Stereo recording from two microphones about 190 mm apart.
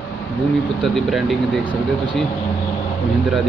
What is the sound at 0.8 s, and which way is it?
Speech, centre (ahead or behind).